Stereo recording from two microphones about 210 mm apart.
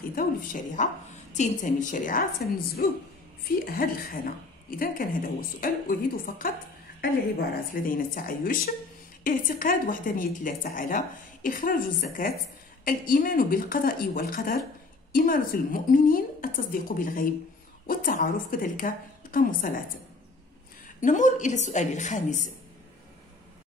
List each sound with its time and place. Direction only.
0.1 s a woman's voice: 40° left (ahead or behind)
21.0 s a woman's voice: 35° left (ahead or behind)